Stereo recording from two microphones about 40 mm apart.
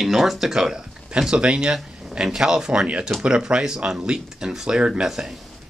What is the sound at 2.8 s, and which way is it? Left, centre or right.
Speech, right.